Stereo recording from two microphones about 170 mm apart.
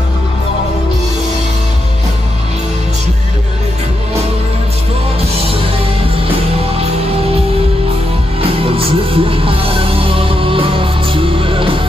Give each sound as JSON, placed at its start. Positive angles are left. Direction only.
{"t": 8.4, "sound": "music", "side_deg": -35}